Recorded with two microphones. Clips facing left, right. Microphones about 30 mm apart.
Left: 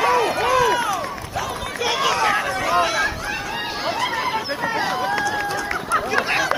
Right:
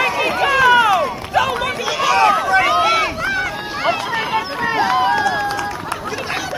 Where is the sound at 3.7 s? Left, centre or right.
Right.